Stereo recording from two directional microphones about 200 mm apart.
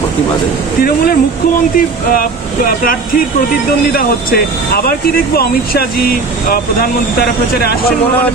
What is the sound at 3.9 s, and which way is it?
Speech, 45° left (ahead or behind).